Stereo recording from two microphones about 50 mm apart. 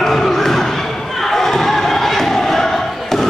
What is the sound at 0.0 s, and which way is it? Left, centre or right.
Thump, centre.